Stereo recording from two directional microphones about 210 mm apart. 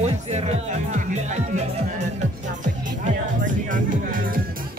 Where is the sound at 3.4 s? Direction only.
40° right (ahead or behind).